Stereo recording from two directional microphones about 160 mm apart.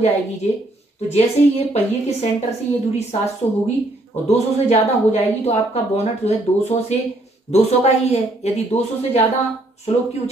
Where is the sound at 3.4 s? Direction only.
40° left (ahead or behind).